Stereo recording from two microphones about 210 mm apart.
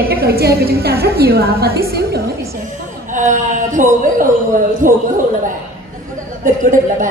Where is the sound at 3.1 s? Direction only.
35° right (ahead or behind).